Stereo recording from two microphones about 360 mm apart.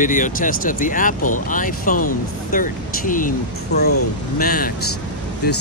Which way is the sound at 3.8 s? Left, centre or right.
Left.